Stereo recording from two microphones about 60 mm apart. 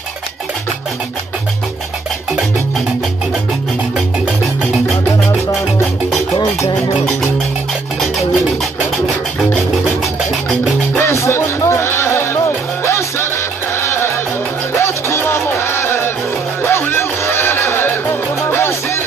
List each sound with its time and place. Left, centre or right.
11.0 s music: left